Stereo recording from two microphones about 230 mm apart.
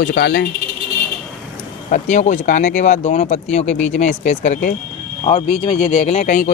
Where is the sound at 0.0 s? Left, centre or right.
Left.